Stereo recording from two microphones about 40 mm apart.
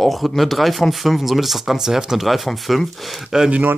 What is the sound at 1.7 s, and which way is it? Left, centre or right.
Speech, centre.